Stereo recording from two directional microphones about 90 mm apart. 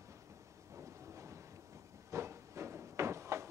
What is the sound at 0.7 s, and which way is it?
Train, 35° right (ahead or behind).